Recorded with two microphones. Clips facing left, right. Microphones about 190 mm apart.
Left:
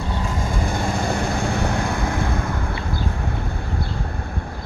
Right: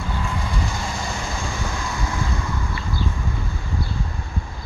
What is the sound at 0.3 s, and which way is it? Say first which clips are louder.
Vehicle: left 3 dB; 45° left (ahead or behind).